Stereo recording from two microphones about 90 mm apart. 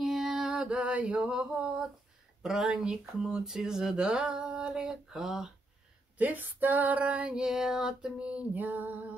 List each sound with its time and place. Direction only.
0.0 s music: 5° right (ahead or behind)
2.4 s speech: 5° right (ahead or behind)
6.1 s speech: 20° right (ahead or behind)